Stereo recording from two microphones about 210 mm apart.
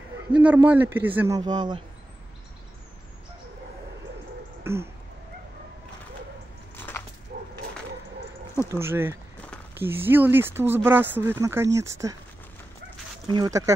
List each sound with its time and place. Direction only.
0.3 s speech: 5° right (ahead or behind)
4.7 s a sound: 10° right (ahead or behind)
8.7 s speech: 10° right (ahead or behind)
13.3 s speech: 15° right (ahead or behind)